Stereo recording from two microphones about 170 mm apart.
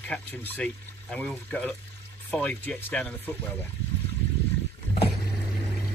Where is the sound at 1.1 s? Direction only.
5° left (ahead or behind).